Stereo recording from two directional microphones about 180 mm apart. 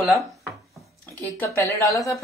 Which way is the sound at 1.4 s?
15° left (ahead or behind).